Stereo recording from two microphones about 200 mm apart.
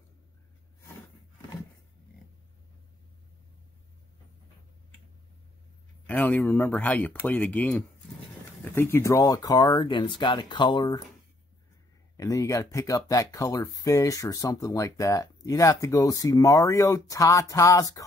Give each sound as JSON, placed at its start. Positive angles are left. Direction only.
{"t": 6.0, "sound": "speech", "side_deg": 10}
{"t": 12.2, "sound": "speech", "side_deg": 15}